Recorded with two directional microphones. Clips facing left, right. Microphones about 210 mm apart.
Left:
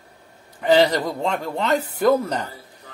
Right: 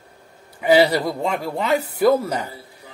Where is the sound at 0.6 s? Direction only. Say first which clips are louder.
Right 1 dB; 10° right (ahead or behind).